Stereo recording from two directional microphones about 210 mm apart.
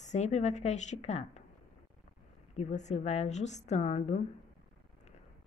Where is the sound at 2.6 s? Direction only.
35° left (ahead or behind).